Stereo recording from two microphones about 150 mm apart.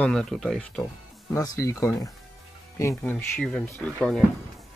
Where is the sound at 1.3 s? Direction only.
20° left (ahead or behind).